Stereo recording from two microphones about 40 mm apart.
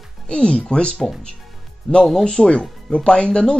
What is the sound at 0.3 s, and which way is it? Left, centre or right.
Speech, left.